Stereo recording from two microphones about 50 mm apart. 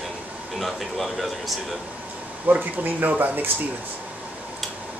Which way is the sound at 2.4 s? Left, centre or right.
Right.